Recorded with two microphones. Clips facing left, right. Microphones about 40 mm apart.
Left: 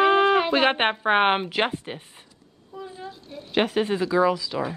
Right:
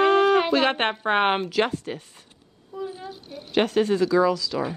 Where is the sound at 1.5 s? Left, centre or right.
Left.